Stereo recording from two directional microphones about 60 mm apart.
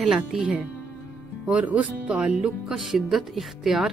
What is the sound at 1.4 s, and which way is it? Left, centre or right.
Speech, right.